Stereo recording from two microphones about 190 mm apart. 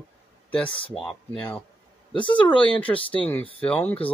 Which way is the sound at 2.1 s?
25° left (ahead or behind).